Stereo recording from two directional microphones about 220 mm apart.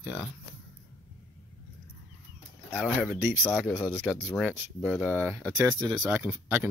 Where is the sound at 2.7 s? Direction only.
Centre (ahead or behind).